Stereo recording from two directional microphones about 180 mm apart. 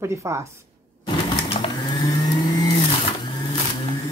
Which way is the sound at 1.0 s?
30° left (ahead or behind).